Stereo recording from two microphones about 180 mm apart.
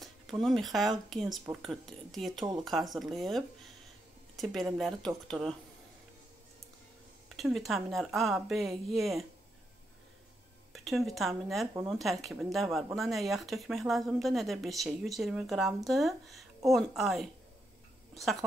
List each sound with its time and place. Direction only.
0.0 s speech: centre (ahead or behind)
7.2 s speech: centre (ahead or behind)
10.7 s speech: centre (ahead or behind)